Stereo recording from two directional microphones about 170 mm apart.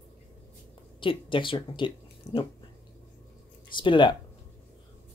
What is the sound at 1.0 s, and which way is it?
Speech, 30° left (ahead or behind).